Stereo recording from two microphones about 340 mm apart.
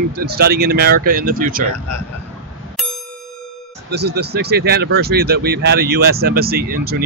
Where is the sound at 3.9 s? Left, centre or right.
Right.